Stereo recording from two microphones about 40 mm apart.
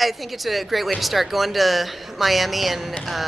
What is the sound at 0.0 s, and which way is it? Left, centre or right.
Speech, centre.